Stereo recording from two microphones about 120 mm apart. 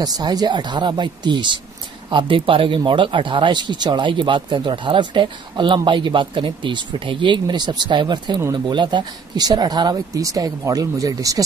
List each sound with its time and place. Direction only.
0.0 s speech: 35° right (ahead or behind)
8.4 s speech: 30° right (ahead or behind)
8.7 s speech: 40° right (ahead or behind)